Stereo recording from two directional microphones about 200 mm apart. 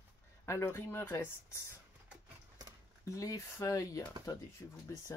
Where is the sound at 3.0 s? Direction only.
15° left (ahead or behind).